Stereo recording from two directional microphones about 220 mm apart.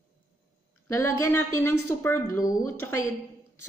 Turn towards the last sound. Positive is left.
turn(degrees=10)  # may be behind; listen again after turning